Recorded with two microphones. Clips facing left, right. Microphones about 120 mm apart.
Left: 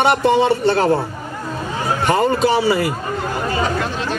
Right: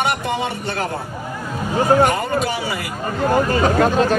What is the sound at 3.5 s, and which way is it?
Speech, 45° right (ahead or behind).